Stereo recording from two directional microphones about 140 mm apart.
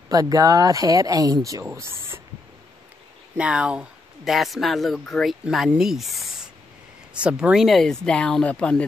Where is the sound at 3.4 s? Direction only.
10° right (ahead or behind).